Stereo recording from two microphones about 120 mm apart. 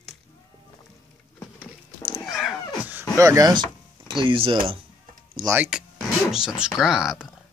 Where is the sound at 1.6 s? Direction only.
10° right (ahead or behind).